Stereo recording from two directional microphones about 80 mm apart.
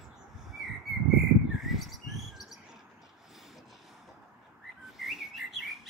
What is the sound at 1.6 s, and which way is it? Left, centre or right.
Bird, centre.